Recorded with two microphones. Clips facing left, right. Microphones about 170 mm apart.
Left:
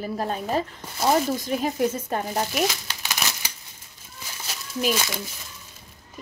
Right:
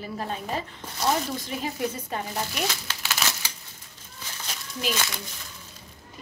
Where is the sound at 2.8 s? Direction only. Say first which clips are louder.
Even; 15° left (ahead or behind).